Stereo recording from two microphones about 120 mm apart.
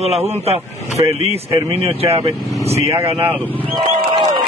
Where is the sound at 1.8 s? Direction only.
55° right (ahead or behind).